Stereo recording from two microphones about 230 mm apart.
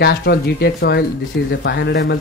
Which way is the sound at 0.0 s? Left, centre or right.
Left.